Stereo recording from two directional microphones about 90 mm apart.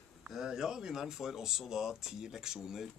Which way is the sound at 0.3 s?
5° right (ahead or behind).